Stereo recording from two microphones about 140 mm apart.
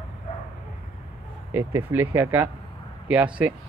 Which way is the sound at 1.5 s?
15° right (ahead or behind).